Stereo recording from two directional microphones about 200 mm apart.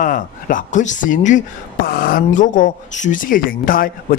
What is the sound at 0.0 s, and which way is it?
Speech, 40° left (ahead or behind).